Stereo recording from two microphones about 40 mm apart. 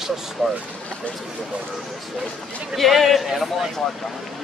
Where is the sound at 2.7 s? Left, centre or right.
Centre.